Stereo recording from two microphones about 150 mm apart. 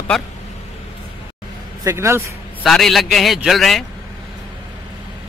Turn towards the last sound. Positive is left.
turn(degrees=0)  # may be behind; listen again after turning